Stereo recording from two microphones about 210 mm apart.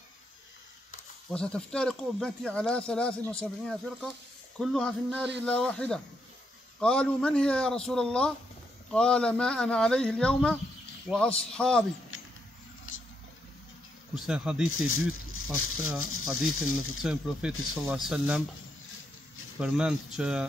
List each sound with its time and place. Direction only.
1.3 s speech: 5° left (ahead or behind)
12.1 s a sound: 70° left (ahead or behind)
14.1 s speech: 5° right (ahead or behind)
14.7 s speech: 80° left
17.0 s speech: 5° right (ahead or behind)
19.6 s speech: 5° right (ahead or behind)